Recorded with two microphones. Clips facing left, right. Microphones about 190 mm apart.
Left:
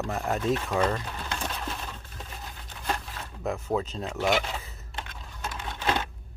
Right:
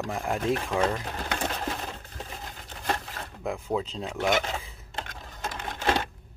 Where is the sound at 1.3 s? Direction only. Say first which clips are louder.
Right 4 dB; 45° right (ahead or behind).